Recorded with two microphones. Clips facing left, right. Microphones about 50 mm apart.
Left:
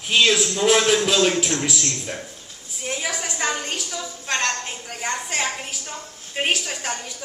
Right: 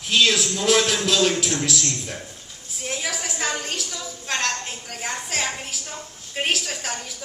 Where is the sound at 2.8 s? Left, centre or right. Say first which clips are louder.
Left 1 dB; centre.